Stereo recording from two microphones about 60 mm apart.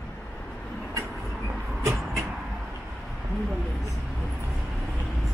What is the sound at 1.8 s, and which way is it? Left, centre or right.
Vehicle, right.